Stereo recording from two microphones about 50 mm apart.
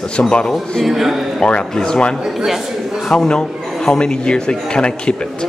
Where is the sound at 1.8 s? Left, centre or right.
Centre.